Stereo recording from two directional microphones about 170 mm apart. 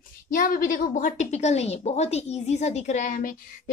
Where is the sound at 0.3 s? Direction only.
55° left (ahead or behind).